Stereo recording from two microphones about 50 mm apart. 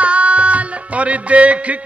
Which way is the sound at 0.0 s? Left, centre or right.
Right.